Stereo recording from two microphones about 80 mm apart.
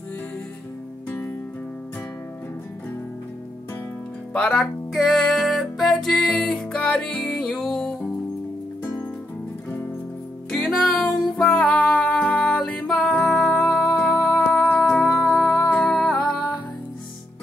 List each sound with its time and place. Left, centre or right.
4.3 s speech: centre
4.9 s music: centre
7.2 s music: centre
10.5 s music: centre
11.5 s music: centre
13.3 s music: centre
14.3 s music: centre
14.8 s music: centre
15.7 s music: centre